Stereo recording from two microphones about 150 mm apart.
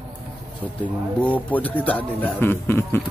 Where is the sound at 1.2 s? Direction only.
10° left (ahead or behind).